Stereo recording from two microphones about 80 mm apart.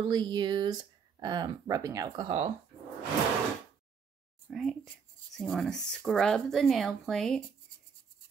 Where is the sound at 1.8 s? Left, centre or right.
Right.